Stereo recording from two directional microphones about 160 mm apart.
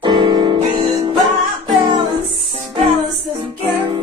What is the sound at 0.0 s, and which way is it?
Music, 25° right (ahead or behind).